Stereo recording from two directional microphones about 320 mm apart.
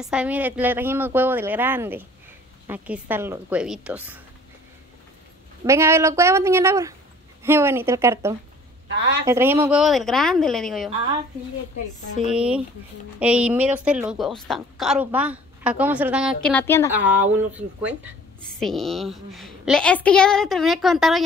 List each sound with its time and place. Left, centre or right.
0.0 s a woman's voice: centre
5.7 s a woman's voice: centre
12.3 s a woman's voice: centre
16.9 s a woman's voice: centre